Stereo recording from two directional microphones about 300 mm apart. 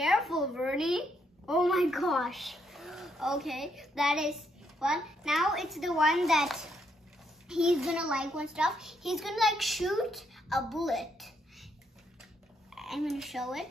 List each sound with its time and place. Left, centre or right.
0.0 s a child's voice: centre
12.7 s speech: centre